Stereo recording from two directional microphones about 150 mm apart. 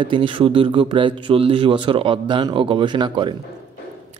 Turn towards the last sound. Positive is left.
turn(degrees=-30)  # may be behind; listen again after turning